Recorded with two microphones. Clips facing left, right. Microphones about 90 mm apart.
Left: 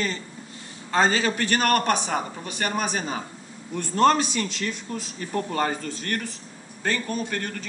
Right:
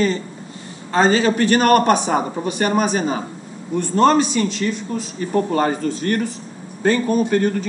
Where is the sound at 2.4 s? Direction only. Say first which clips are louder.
Right 9 dB; 10° right (ahead or behind).